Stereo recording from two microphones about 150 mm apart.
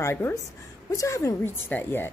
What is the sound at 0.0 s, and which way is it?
Speech, 20° left (ahead or behind).